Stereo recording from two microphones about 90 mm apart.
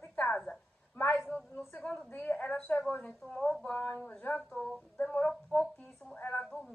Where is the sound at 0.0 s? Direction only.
15° left (ahead or behind).